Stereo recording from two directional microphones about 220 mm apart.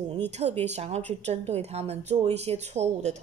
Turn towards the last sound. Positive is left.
turn(degrees=-30)  # may be behind; listen again after turning